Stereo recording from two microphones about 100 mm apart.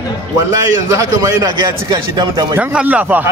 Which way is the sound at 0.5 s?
35° right (ahead or behind).